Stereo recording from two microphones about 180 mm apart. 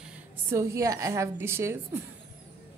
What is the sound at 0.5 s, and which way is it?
A woman's voice, 15° right (ahead or behind).